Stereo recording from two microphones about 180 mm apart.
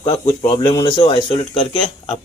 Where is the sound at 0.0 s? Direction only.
30° left (ahead or behind).